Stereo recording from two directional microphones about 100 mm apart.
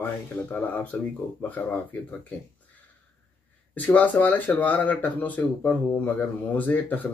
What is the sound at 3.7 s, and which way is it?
Speech, 15° left (ahead or behind).